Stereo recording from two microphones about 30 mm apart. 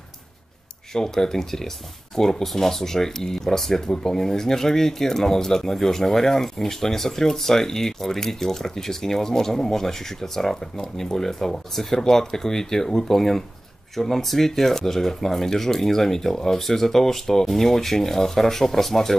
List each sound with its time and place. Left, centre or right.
0.9 s speech: centre